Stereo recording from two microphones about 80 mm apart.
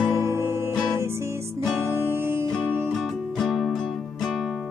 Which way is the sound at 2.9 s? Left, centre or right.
Centre.